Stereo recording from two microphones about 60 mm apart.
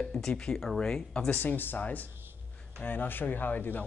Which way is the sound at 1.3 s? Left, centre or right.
Left.